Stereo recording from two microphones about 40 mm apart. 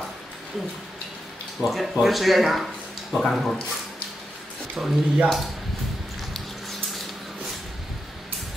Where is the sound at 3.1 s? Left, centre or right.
Centre.